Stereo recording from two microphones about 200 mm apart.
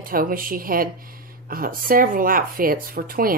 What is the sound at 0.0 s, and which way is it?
Speech, 45° right (ahead or behind).